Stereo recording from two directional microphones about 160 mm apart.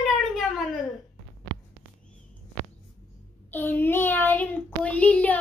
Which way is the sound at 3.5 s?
10° left (ahead or behind).